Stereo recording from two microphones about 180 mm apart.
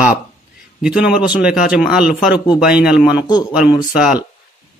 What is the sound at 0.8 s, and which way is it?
Speech, 5° right (ahead or behind).